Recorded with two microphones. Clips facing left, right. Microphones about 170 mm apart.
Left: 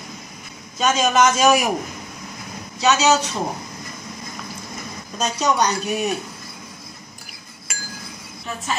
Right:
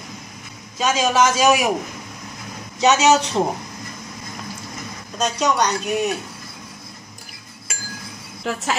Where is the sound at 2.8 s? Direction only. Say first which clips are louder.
Right 2 dB; 20° right (ahead or behind).